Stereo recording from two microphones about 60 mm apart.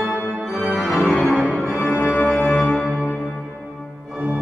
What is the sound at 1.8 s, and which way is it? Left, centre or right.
Organ, left.